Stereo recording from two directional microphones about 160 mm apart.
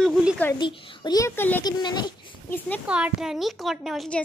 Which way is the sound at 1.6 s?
25° left (ahead or behind).